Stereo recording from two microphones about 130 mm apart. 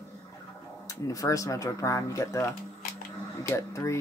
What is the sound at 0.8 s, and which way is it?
Speech, 25° left (ahead or behind).